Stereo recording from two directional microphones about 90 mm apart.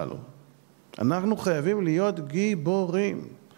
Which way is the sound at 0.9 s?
20° right (ahead or behind).